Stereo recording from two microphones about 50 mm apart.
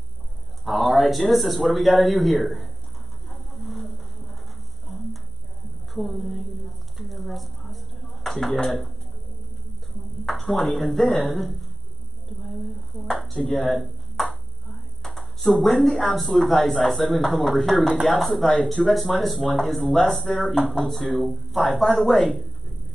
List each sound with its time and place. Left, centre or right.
0.7 s speech: centre
3.3 s a sound: centre
5.9 s speech: centre
7.0 s dishes: centre
10.2 s speech: centre
12.4 s a sound: centre
13.5 s speech: centre
20.2 s speech: centre
20.7 s speech: centre